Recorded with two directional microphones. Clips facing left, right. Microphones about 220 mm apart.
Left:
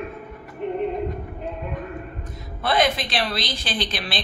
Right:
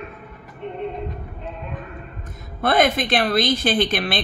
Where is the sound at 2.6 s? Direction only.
55° right (ahead or behind).